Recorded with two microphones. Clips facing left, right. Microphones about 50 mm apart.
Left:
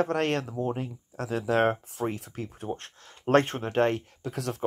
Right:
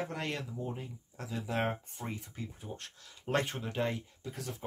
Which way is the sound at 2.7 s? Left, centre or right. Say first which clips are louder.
Left 10 dB; left.